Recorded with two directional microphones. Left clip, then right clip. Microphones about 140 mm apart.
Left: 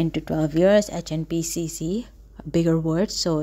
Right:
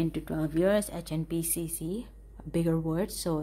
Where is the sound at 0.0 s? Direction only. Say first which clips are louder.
Left 7 dB; 45° left (ahead or behind).